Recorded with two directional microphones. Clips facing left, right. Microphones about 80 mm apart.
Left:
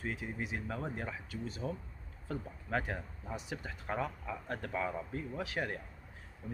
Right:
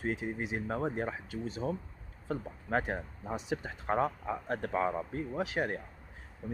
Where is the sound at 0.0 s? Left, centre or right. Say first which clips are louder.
Right 5 dB; right.